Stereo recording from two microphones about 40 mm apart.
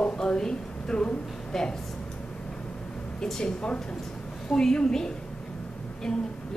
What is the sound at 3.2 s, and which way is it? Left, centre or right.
A woman's voice, centre.